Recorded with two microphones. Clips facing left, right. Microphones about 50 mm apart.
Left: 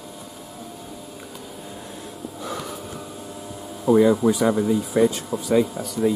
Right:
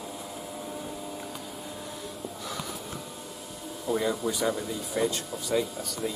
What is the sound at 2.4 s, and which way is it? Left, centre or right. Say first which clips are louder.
Snort: left 7 dB; centre.